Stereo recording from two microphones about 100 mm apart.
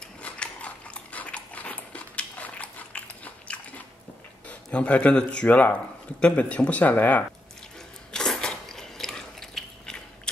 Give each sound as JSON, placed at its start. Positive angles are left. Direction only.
{"t": 0.2, "sound": "biting", "side_deg": 10}
{"t": 4.5, "sound": "speech", "side_deg": 10}
{"t": 8.1, "sound": "biting", "side_deg": 5}